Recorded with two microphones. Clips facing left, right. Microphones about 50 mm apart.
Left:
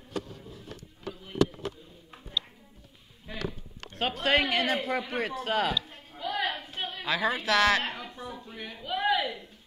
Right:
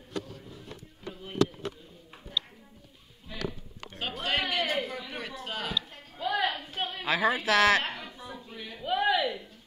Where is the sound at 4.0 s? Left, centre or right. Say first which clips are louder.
Left 5 dB; left.